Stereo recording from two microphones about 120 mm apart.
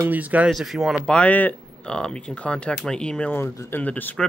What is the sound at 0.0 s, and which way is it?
Speech, 15° right (ahead or behind).